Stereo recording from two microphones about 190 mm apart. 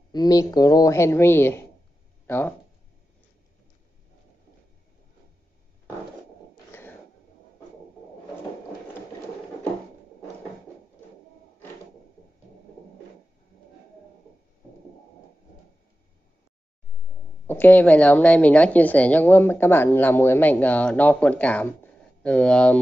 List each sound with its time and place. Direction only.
0.1 s a woman's voice: 20° left (ahead or behind)
6.7 s a sound: 10° left (ahead or behind)
17.5 s a woman's voice: 10° left (ahead or behind)